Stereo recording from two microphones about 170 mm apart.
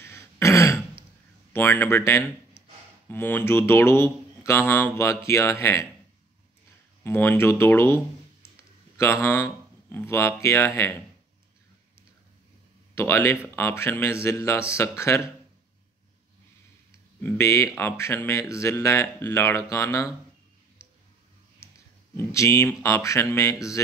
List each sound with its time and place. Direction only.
0.0 s throat clearing: 15° left (ahead or behind)
1.5 s speech: 15° left (ahead or behind)
7.0 s speech: 10° left (ahead or behind)
12.9 s speech: 15° left (ahead or behind)
17.2 s speech: 15° left (ahead or behind)
22.1 s speech: 15° left (ahead or behind)